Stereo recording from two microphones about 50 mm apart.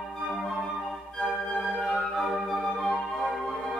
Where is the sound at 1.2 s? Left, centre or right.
Centre.